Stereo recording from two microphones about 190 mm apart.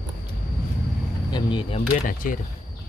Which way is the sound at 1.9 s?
45° left (ahead or behind).